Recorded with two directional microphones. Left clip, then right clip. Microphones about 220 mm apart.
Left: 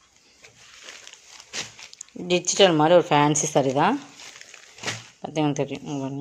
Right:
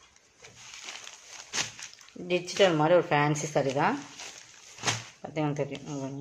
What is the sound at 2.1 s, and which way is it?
Speech, 45° left (ahead or behind).